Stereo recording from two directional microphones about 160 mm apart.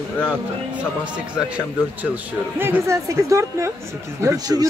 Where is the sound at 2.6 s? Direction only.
15° right (ahead or behind).